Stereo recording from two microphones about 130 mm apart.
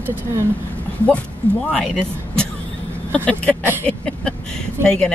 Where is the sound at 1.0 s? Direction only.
10° left (ahead or behind).